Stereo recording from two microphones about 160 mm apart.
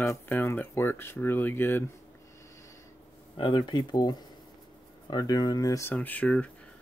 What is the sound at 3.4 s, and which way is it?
Speech, 30° left (ahead or behind).